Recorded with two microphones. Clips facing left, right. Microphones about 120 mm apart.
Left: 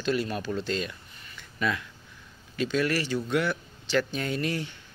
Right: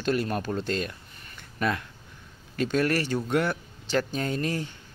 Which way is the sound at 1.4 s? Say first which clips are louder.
Right 2 dB; 50° right (ahead or behind).